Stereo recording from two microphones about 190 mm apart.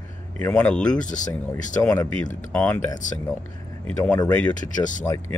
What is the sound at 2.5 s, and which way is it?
Speech, 10° left (ahead or behind).